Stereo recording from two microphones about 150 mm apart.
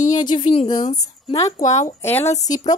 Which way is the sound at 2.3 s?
50° left (ahead or behind).